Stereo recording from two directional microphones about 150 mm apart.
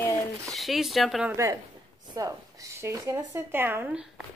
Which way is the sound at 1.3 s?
20° right (ahead or behind).